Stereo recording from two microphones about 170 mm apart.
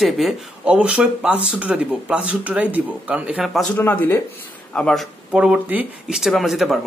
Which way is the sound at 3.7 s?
10° left (ahead or behind).